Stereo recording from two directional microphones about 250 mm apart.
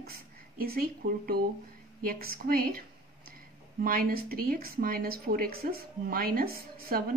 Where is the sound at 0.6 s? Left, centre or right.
Right.